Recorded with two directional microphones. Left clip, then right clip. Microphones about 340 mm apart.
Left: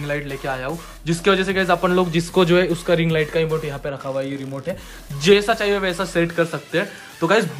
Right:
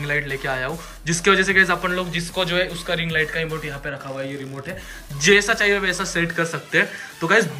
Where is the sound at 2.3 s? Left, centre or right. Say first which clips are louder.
Left 5 dB; centre.